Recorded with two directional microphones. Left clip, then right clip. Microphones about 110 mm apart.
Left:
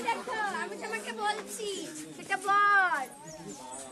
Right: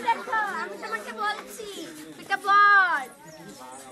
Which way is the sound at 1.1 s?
5° right (ahead or behind).